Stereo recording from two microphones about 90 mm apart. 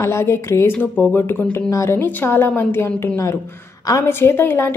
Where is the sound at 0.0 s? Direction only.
30° left (ahead or behind).